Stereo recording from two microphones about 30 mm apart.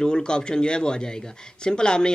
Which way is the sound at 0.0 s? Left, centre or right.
Left.